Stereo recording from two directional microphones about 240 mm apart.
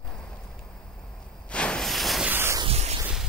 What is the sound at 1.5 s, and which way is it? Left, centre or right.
Hiss, centre.